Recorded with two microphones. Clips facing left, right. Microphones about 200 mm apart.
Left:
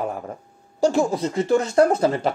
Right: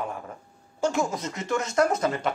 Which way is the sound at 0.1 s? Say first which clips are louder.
Left 6 dB; 40° left (ahead or behind).